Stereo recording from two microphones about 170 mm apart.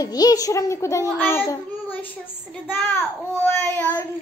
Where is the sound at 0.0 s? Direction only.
20° left (ahead or behind).